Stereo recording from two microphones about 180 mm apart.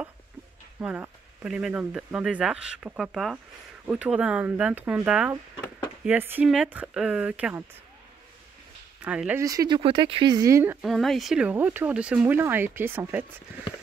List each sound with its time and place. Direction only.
0.7 s speech: 10° right (ahead or behind)
9.0 s speech: 5° right (ahead or behind)
9.4 s speech: 20° right (ahead or behind)
10.9 s speech: centre (ahead or behind)